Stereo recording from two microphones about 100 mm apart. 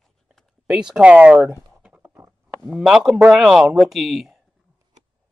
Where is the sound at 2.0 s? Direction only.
20° right (ahead or behind).